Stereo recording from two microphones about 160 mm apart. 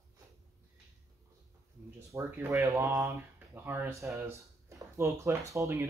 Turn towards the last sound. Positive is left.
turn(degrees=-20)  # may be behind; listen again after turning